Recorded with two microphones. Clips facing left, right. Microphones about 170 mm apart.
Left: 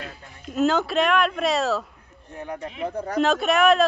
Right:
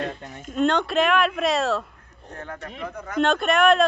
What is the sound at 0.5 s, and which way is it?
Speech, 5° left (ahead or behind).